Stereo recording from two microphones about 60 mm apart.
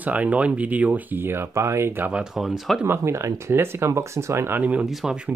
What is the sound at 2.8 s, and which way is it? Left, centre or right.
Speech, right.